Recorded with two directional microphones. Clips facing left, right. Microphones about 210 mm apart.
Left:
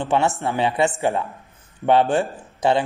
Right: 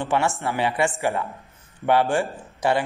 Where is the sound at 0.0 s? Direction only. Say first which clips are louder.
Left 3 dB; 20° left (ahead or behind).